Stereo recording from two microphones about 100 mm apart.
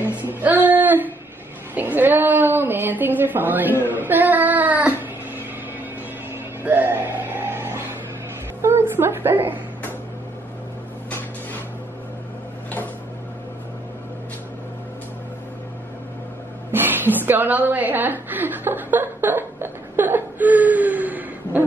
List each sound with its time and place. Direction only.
0.2 s music: 20° right (ahead or behind)
1.8 s a woman's voice: 20° right (ahead or behind)
3.8 s child singing: 20° right (ahead or behind)
6.6 s music: 20° right (ahead or behind)
8.6 s a woman's voice: 25° right (ahead or behind)
16.7 s a sound: 20° right (ahead or behind)